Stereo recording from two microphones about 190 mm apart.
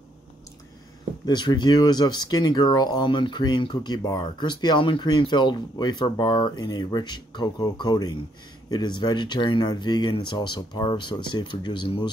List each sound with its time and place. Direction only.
1.2 s speech: 20° left (ahead or behind)